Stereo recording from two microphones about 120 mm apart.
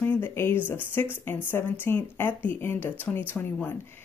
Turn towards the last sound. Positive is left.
turn(degrees=15)  # may be behind; listen again after turning